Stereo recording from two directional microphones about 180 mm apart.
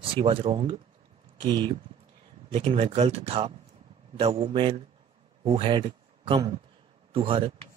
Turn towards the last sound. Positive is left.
turn(degrees=-30)  # may be behind; listen again after turning